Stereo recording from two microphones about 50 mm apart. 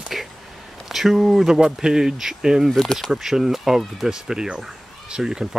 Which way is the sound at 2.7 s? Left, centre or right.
Centre.